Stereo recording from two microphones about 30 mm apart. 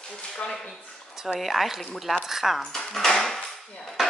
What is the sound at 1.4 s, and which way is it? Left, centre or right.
Speech, centre.